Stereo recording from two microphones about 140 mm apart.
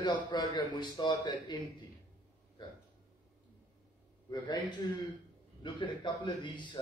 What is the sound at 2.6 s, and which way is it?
Speech, 30° left (ahead or behind).